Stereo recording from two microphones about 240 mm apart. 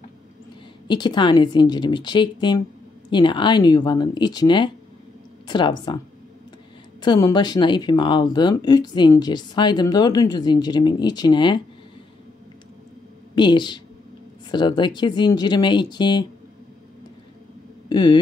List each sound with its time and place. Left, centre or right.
0.8 s speech: centre
7.0 s speech: centre
13.3 s speech: centre
17.8 s a sound: centre